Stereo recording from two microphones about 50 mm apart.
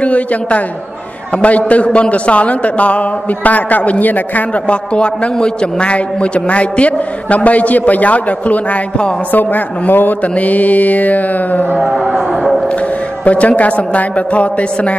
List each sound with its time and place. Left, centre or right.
0.0 s a man's voice: left
4.6 s a man's voice: left
11.8 s music: centre
13.2 s a man's voice: left